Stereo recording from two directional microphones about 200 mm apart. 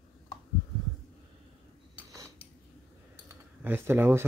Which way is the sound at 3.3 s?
10° right (ahead or behind).